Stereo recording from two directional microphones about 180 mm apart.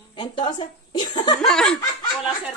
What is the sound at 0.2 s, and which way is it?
A woman's voice, 25° left (ahead or behind).